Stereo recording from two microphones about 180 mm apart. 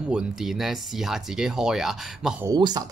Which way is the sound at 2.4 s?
25° right (ahead or behind).